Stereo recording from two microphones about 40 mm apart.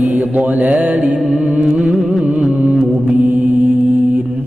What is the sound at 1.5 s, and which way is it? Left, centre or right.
Music, right.